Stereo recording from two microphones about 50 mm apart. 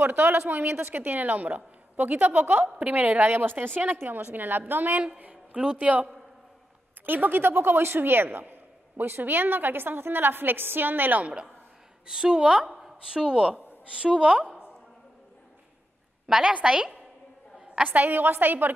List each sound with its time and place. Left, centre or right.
0.0 s a woman's voice: right
0.7 s a woman's voice: right
5.3 s a woman's voice: centre
7.1 s a man's voice: right
12.1 s a woman's voice: centre
16.4 s a woman's voice: centre
17.8 s a woman's voice: right